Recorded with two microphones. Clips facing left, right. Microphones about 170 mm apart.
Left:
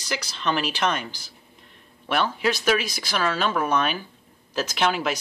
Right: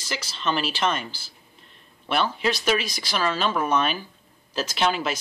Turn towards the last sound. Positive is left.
turn(degrees=10)  # may be behind; listen again after turning